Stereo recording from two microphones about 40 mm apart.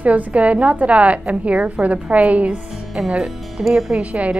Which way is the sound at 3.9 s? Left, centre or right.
Right.